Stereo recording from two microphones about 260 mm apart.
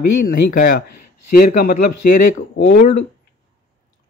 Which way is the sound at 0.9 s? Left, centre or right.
Left.